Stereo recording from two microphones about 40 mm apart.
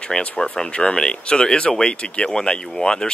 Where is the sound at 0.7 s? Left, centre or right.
Left.